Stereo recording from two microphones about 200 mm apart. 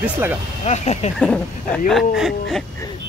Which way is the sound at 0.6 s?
35° left (ahead or behind).